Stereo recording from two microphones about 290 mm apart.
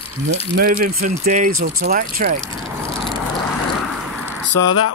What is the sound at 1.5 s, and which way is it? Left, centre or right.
Speech, right.